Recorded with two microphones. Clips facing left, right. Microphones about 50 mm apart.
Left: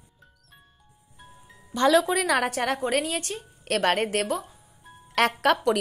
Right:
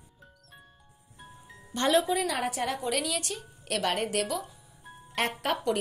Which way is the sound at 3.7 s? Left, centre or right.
Left.